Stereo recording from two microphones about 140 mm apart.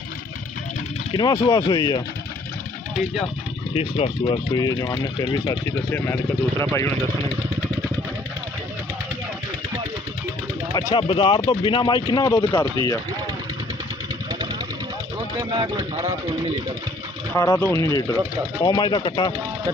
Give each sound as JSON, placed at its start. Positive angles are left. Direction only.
{"t": 1.1, "sound": "speech", "side_deg": 30}
{"t": 3.7, "sound": "speech", "side_deg": 45}
{"t": 4.2, "sound": "speech", "side_deg": 35}
{"t": 5.9, "sound": "speech", "side_deg": 15}
{"t": 10.7, "sound": "a sound", "side_deg": 25}
{"t": 11.0, "sound": "speech", "side_deg": 40}
{"t": 12.3, "sound": "speech", "side_deg": 20}
{"t": 15.5, "sound": "speech", "side_deg": -30}
{"t": 17.4, "sound": "speech", "side_deg": 20}